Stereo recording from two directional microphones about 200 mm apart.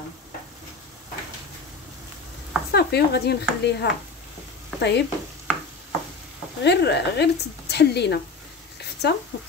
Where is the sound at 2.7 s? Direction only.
55° left (ahead or behind).